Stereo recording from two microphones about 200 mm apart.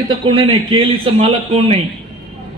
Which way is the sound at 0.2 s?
25° right (ahead or behind).